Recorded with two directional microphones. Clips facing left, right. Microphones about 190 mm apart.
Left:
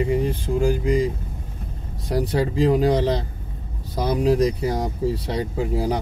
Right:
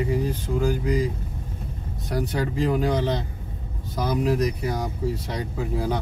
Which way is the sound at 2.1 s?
35° left (ahead or behind).